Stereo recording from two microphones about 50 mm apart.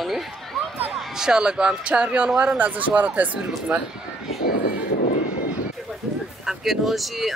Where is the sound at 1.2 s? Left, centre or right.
Centre.